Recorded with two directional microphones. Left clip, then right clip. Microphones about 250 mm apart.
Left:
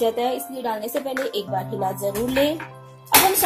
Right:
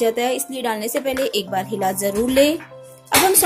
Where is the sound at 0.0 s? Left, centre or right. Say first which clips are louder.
Right 2 dB; centre.